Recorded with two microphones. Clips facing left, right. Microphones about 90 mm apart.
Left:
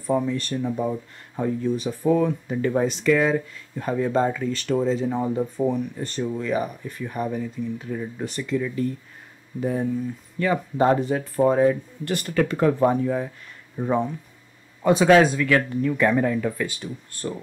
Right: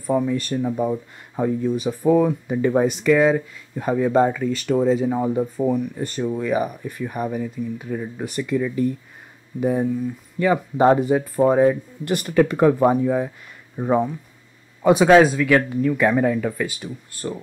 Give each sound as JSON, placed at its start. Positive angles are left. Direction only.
{"t": 0.0, "sound": "a man's voice", "side_deg": -5}